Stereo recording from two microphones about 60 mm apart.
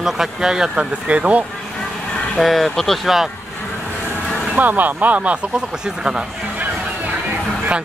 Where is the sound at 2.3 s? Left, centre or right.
Centre.